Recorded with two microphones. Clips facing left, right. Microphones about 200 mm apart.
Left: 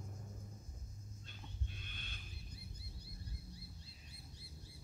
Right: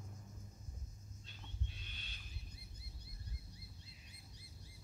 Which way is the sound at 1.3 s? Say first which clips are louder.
Even; 50° left (ahead or behind).